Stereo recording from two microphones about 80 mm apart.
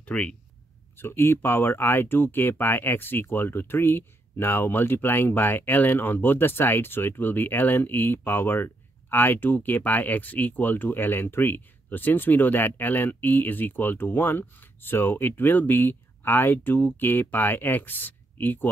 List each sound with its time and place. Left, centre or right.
0.0 s speech: centre
0.9 s speech: left